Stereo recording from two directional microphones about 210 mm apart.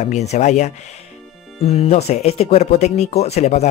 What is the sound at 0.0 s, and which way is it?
Speech, 30° left (ahead or behind).